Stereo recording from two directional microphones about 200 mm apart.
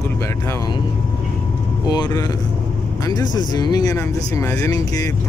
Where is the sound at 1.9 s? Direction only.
20° left (ahead or behind).